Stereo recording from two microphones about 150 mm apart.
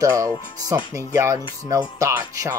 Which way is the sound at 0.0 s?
20° right (ahead or behind).